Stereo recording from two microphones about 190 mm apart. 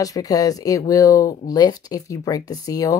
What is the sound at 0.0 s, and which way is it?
Speech, 20° left (ahead or behind).